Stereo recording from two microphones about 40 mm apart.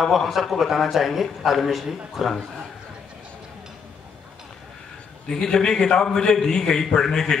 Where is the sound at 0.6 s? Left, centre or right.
Centre.